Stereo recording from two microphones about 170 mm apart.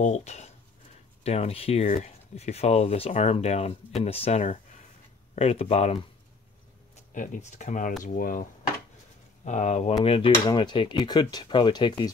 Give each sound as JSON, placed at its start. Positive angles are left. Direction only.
{"t": 0.0, "sound": "speech", "side_deg": 40}
{"t": 7.2, "sound": "speech", "side_deg": 45}